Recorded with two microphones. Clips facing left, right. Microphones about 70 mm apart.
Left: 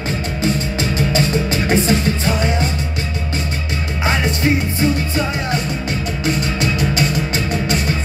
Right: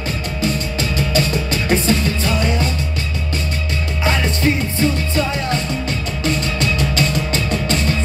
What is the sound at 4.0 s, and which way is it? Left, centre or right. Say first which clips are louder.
Music: left 1 dB; centre.